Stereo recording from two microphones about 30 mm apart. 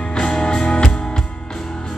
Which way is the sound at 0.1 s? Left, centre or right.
Left.